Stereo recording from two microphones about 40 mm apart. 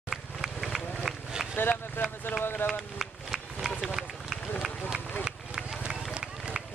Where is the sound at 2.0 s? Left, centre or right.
Left.